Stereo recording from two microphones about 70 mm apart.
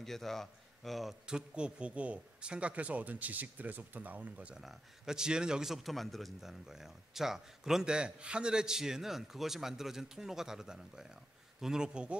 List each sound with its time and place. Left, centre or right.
0.0 s a man's voice: centre
1.2 s speech: centre
4.6 s speech: centre